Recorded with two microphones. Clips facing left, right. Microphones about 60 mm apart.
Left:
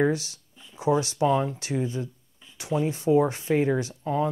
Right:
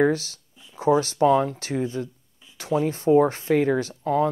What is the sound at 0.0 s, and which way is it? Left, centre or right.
Speech, right.